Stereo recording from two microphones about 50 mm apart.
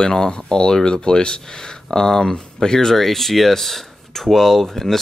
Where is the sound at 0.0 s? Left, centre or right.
Centre.